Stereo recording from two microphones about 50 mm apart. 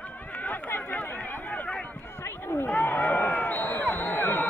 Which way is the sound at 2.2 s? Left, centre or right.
Left.